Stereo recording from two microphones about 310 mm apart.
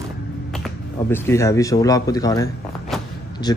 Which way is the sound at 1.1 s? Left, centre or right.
Centre.